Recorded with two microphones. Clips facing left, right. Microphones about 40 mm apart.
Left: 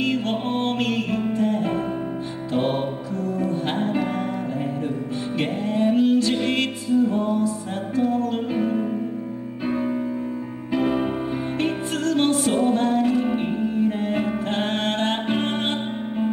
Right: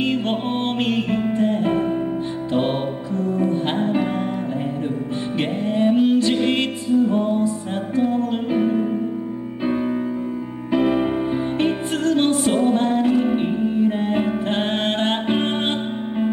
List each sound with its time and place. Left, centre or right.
0.0 s music: right
3.2 s music: right
5.4 s music: right
9.7 s music: centre
11.5 s music: right
13.2 s music: centre
13.7 s music: right